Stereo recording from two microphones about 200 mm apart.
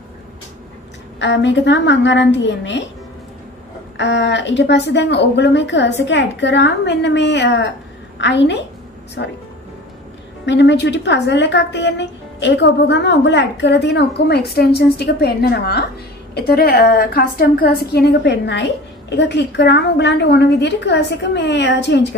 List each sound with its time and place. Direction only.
1.2 s a woman's voice: 60° left (ahead or behind)
3.9 s a woman's voice: 60° left (ahead or behind)
10.4 s a woman's voice: 60° left (ahead or behind)